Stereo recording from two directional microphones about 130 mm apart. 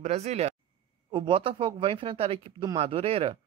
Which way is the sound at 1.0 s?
40° right (ahead or behind).